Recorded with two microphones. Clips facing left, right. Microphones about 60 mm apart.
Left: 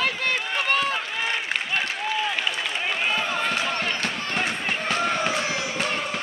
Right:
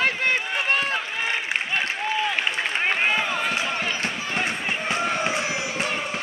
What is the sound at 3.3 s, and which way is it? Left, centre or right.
Run, centre.